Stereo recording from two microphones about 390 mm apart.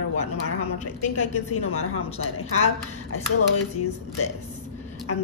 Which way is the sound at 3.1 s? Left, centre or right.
Left.